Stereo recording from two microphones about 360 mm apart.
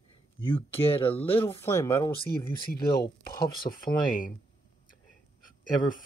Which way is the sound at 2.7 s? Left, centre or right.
Left.